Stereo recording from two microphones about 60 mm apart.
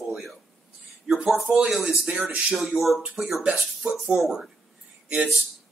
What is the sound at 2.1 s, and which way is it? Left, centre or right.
Speech, right.